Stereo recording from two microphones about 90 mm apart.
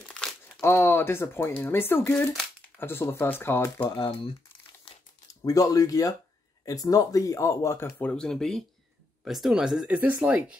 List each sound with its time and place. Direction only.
0.1 s crumpling: 5° left (ahead or behind)
0.6 s speech: 25° left (ahead or behind)
4.9 s crumpling: 90° left
5.3 s speech: 40° left (ahead or behind)
8.0 s speech: 10° left (ahead or behind); by 10.4 s 15° right (ahead or behind)